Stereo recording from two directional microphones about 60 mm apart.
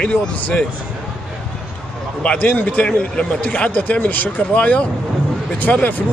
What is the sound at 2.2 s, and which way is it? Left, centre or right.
Speech, left.